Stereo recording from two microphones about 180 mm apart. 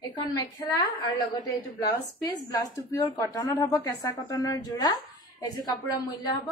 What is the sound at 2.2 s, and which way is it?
A woman's voice, 20° left (ahead or behind).